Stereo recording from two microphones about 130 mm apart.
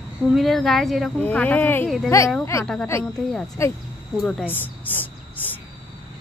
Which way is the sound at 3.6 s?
20° left (ahead or behind).